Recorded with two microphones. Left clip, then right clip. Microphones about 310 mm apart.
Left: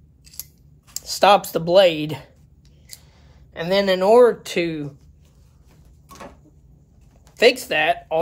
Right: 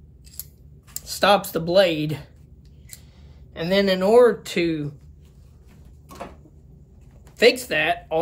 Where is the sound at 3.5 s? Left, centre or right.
Centre.